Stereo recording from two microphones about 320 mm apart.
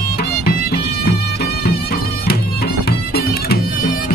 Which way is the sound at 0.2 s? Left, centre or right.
Left.